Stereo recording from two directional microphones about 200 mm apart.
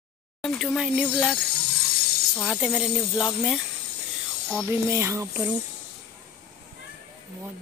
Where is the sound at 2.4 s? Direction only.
5° right (ahead or behind).